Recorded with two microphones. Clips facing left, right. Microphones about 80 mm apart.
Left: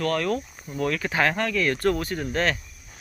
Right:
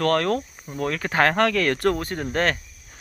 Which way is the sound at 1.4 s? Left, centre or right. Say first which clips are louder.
Right 3 dB; right.